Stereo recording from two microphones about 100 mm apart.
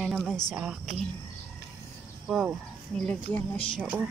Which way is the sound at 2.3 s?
Centre (ahead or behind).